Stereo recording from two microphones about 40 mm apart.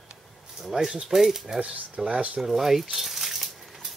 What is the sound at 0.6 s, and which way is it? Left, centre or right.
Speech, centre.